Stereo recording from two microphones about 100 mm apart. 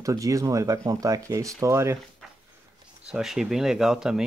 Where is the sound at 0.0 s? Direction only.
35° right (ahead or behind).